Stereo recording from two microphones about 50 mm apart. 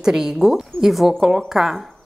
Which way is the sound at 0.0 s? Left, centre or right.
Centre.